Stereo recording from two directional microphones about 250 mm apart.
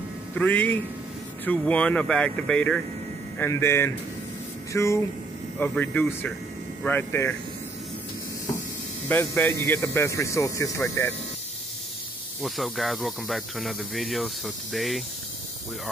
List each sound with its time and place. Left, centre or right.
0.3 s speech: centre
9.1 s speech: centre
12.4 s speech: centre